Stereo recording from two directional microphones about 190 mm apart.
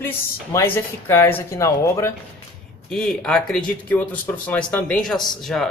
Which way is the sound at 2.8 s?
5° left (ahead or behind).